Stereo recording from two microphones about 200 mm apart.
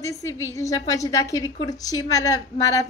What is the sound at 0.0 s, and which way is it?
A woman's voice, 15° left (ahead or behind).